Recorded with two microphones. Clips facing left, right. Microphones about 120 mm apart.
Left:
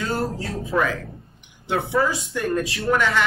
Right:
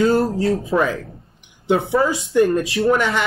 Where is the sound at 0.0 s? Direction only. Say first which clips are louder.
Right 9 dB; 30° right (ahead or behind).